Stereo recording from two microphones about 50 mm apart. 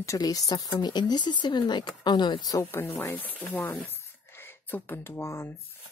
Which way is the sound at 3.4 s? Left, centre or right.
Left.